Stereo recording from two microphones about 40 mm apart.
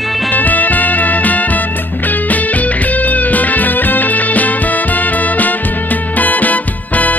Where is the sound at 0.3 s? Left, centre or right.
Left.